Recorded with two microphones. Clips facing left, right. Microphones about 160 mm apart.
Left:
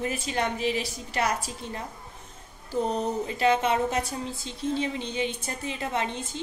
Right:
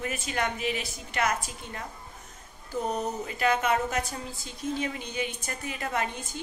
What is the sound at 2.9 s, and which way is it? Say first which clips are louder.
Speech: left 3 dB; 30° left (ahead or behind).